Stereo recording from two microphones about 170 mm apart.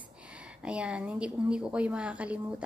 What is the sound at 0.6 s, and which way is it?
A woman's voice, 5° right (ahead or behind).